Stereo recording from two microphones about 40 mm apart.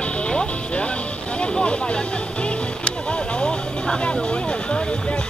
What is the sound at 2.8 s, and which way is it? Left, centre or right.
Vehicle, left.